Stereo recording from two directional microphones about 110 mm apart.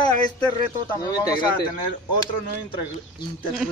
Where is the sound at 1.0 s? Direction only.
35° left (ahead or behind).